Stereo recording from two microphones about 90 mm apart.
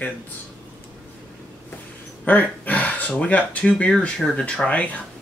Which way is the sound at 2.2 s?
20° left (ahead or behind).